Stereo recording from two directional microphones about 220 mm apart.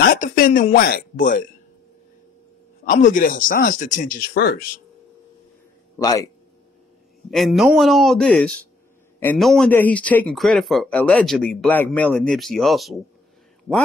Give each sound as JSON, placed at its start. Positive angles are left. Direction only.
{"t": 0.0, "sound": "speech", "side_deg": 40}
{"t": 2.8, "sound": "speech", "side_deg": 35}
{"t": 5.9, "sound": "a man's voice", "side_deg": 15}
{"t": 7.2, "sound": "speech", "side_deg": 0}